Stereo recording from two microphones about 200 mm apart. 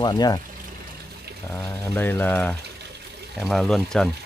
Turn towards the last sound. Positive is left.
turn(degrees=0)  # may be behind; listen again after turning